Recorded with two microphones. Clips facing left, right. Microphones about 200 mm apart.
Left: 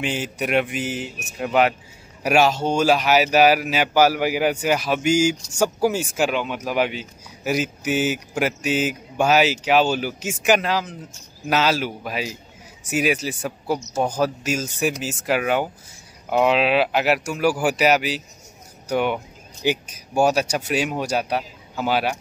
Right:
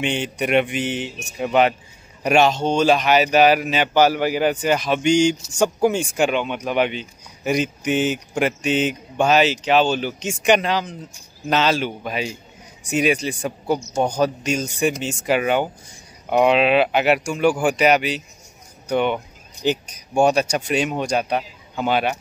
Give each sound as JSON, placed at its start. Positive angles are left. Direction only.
{"t": 0.0, "sound": "speech", "side_deg": 0}